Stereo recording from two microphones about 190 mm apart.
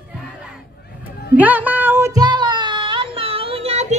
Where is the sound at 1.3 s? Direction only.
10° right (ahead or behind).